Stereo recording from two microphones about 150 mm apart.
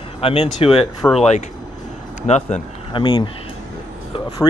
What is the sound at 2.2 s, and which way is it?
Speech, 50° left (ahead or behind).